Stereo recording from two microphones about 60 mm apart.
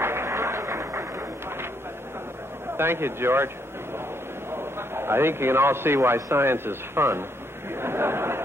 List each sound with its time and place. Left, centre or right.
0.0 s a sound: right
2.8 s a man's voice: right
4.5 s a man's voice: right